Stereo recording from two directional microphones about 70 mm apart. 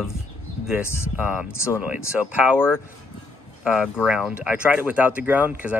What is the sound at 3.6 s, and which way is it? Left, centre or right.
Speech, centre.